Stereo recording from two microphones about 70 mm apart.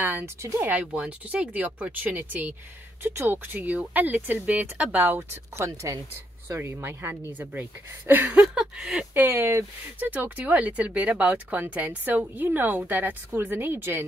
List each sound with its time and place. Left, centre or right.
0.0 s speech: right
0.7 s speech: centre; by 7.3 s right
8.1 s speech: right
8.4 s a sound: centre
9.1 s speech: right